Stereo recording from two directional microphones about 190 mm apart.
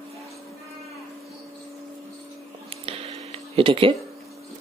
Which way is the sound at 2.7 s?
30° right (ahead or behind).